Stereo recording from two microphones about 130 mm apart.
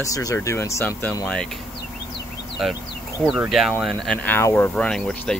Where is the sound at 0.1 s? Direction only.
25° left (ahead or behind).